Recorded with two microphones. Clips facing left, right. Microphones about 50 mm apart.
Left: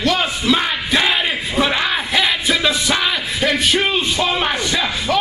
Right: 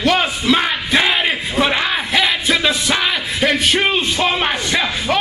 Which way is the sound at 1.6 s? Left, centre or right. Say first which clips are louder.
Even; centre.